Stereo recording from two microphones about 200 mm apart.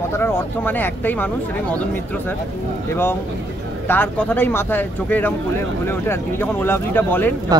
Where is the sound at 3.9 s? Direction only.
10° left (ahead or behind).